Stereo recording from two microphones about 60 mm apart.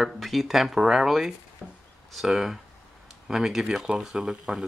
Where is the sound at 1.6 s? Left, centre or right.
Centre.